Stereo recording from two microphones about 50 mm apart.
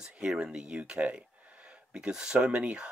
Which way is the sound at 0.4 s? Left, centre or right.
Centre.